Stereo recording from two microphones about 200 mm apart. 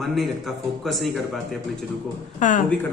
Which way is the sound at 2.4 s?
40° left (ahead or behind).